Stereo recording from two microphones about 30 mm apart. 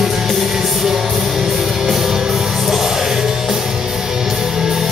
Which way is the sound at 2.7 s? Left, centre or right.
Centre.